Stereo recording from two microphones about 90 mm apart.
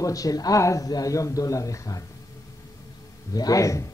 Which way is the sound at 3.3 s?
45° left (ahead or behind).